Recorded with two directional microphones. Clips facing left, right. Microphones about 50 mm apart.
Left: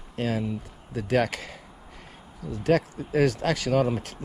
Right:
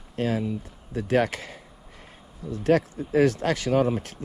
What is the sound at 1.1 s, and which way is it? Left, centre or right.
Speech, left.